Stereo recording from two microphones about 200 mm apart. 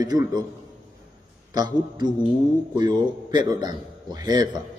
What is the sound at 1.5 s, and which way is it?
A man's voice, 20° right (ahead or behind).